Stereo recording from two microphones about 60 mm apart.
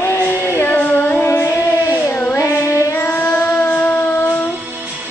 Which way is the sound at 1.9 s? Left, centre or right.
Left.